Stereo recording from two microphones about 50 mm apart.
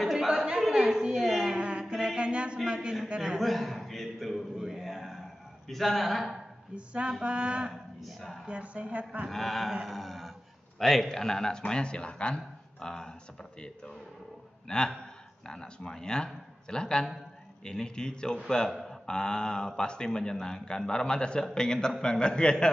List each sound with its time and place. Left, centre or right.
0.1 s a sound: centre
2.7 s a man's voice: centre
3.3 s a man's voice: centre
4.6 s a man's voice: centre
6.7 s speech: right
7.7 s speech: centre
8.5 s speech: right
9.3 s a man's voice: centre
9.8 s a sound: centre
10.8 s a man's voice: centre